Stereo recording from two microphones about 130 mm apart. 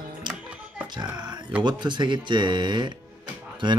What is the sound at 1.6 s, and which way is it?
Speech, 35° right (ahead or behind).